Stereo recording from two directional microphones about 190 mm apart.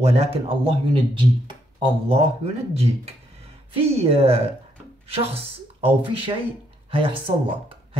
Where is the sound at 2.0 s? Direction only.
35° right (ahead or behind).